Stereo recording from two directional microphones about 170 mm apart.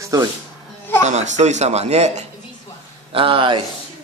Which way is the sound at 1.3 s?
45° right (ahead or behind).